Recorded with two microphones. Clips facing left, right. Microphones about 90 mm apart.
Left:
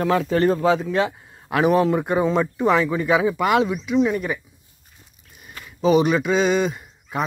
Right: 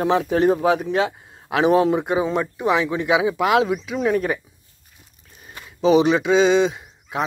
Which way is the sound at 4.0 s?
45° right (ahead or behind).